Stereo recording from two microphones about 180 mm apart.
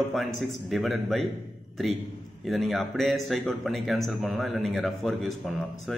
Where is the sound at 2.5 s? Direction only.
Centre (ahead or behind).